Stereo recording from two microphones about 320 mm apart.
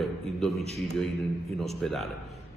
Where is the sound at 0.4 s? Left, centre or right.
Centre.